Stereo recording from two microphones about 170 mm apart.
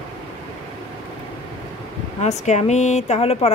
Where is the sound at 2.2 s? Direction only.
40° left (ahead or behind).